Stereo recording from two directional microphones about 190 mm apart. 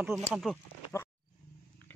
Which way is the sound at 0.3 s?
Centre (ahead or behind).